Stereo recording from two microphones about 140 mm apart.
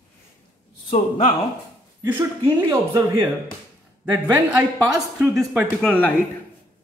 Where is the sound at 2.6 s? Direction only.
30° right (ahead or behind).